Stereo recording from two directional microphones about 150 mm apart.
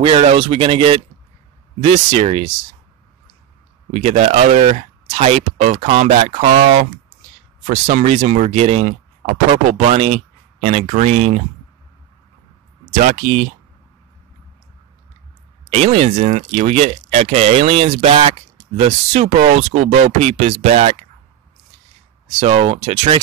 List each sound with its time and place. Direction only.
0.0 s speech: 40° right (ahead or behind)
3.9 s speech: 45° right (ahead or behind)
12.9 s speech: 55° right (ahead or behind)
15.7 s speech: 45° right (ahead or behind)
22.4 s speech: 40° right (ahead or behind)